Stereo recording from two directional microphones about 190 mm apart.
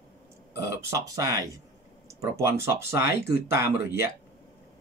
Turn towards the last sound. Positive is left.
turn(degrees=-15)  # may be behind; listen again after turning